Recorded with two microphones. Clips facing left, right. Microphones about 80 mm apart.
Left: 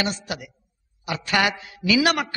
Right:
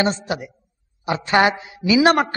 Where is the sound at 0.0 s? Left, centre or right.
Right.